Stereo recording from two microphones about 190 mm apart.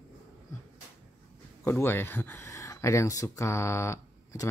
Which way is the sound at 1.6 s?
10° left (ahead or behind).